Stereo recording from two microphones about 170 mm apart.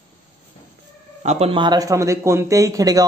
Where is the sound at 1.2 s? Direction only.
35° right (ahead or behind).